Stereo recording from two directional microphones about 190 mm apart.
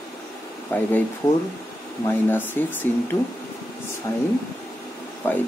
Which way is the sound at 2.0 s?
10° left (ahead or behind).